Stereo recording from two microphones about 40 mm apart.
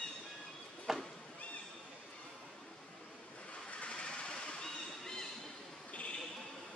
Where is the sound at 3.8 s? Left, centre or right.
Left.